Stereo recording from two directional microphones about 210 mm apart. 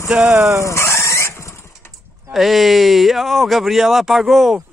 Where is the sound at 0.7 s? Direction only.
15° left (ahead or behind).